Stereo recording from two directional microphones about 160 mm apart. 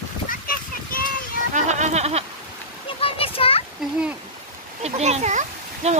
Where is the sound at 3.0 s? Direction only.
35° left (ahead or behind).